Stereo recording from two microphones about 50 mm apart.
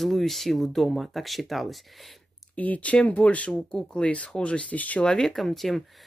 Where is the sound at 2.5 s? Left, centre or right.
Left.